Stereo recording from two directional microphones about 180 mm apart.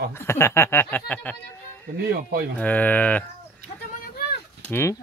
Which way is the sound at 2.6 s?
10° left (ahead or behind).